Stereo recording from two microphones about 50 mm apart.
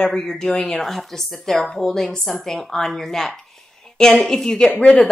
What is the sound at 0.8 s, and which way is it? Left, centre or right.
A woman's voice, centre.